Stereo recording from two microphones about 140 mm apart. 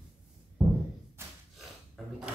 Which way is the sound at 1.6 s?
5° right (ahead or behind).